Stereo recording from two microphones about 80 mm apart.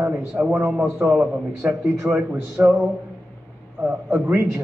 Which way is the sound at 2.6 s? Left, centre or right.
Centre.